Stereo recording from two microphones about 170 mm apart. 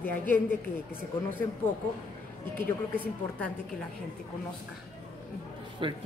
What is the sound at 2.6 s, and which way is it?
Speech, 10° left (ahead or behind).